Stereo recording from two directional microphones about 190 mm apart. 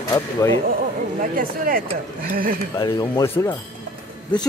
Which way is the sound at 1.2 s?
50° right (ahead or behind).